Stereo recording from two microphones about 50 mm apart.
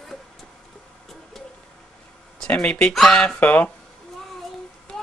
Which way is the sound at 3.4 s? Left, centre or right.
Left.